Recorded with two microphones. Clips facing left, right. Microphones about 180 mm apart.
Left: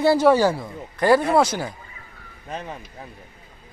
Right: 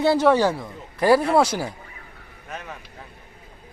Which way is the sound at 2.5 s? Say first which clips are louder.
Left 4 dB; 30° left (ahead or behind).